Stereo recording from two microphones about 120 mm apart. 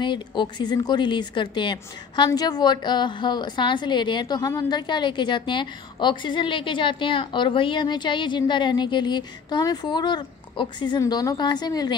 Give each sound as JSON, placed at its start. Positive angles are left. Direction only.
{"t": 0.0, "sound": "a woman's voice", "side_deg": 40}